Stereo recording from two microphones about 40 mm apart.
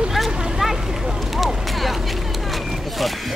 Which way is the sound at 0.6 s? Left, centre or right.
Centre.